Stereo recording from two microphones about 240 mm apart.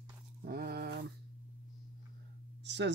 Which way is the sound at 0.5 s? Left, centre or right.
Right.